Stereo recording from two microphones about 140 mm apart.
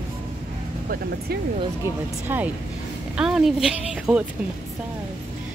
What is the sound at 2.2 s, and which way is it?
Speech, 15° right (ahead or behind).